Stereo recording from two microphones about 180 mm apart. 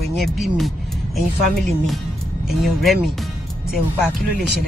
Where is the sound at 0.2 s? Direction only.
Centre (ahead or behind).